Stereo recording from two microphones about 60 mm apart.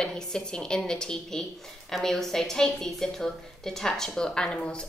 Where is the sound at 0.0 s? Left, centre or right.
Centre.